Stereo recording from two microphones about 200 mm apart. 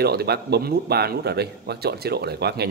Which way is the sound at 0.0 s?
55° right (ahead or behind).